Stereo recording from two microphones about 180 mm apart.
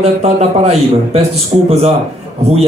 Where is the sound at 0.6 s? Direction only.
35° right (ahead or behind).